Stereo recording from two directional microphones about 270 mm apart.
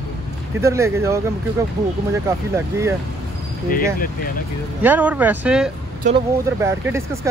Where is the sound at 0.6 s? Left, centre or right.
Centre.